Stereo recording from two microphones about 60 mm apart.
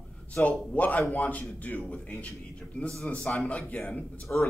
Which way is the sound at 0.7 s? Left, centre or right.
Left.